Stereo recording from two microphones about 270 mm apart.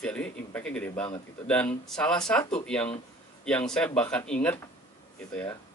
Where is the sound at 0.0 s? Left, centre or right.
Centre.